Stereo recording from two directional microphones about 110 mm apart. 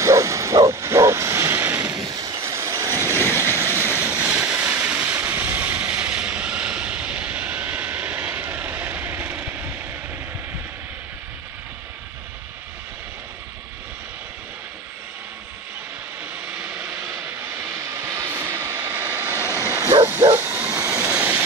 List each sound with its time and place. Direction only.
0.0 s bow-wow: 30° right (ahead or behind)
2.0 s vehicle: 35° right (ahead or behind)
3.1 s vehicle: 20° left (ahead or behind)
3.6 s train: 20° right (ahead or behind)
4.0 s vehicle: 10° right (ahead or behind)
16.5 s vehicle: 10° right (ahead or behind)
16.9 s vehicle: 30° right (ahead or behind)
19.3 s vehicle: 25° left (ahead or behind)
19.9 s bow-wow: 20° right (ahead or behind)
20.8 s train: 15° right (ahead or behind)